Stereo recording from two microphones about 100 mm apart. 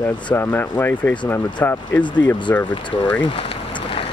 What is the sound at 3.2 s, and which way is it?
Speech, 65° left (ahead or behind).